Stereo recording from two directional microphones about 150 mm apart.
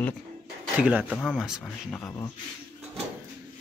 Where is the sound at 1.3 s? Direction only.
5° right (ahead or behind).